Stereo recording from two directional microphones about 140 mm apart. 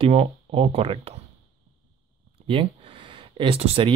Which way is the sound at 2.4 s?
40° right (ahead or behind).